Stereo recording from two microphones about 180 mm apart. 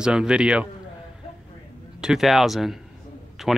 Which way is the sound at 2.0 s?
Centre (ahead or behind).